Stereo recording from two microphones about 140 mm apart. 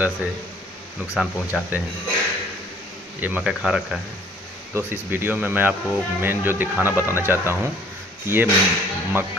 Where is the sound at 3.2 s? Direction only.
10° right (ahead or behind).